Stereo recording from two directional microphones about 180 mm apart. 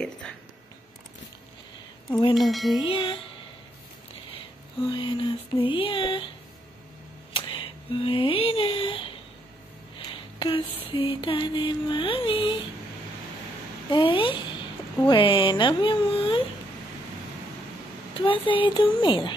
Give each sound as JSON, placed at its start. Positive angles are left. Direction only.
{"t": 2.3, "sound": "music", "side_deg": 0}
{"t": 2.8, "sound": "speech", "side_deg": 30}
{"t": 4.8, "sound": "speech", "side_deg": 25}
{"t": 7.3, "sound": "speech", "side_deg": 30}
{"t": 9.9, "sound": "a sound", "side_deg": 30}
{"t": 10.9, "sound": "speech", "side_deg": 30}
{"t": 13.8, "sound": "speech", "side_deg": 25}
{"t": 18.1, "sound": "speech", "side_deg": 30}